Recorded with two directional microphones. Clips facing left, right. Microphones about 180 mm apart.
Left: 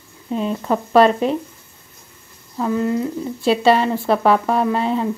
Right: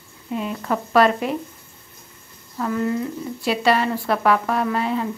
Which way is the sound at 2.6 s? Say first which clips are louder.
Left 3 dB; 20° left (ahead or behind).